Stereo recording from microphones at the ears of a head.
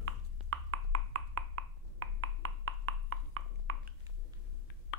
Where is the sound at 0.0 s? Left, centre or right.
Right.